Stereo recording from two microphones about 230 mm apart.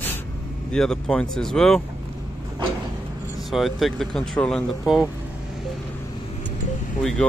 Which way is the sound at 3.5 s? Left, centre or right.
Centre.